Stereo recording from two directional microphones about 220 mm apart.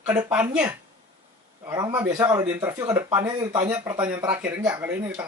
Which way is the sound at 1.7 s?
15° right (ahead or behind).